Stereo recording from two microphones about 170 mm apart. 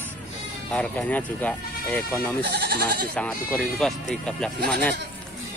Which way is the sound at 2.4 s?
70° right (ahead or behind).